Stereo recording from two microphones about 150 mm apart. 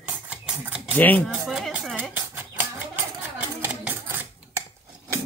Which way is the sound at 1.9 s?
10° right (ahead or behind).